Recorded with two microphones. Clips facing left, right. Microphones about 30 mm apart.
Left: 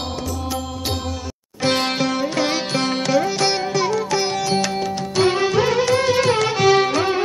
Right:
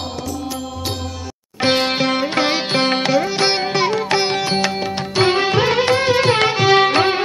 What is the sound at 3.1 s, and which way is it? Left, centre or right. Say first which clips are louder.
Music: right 1 dB; right.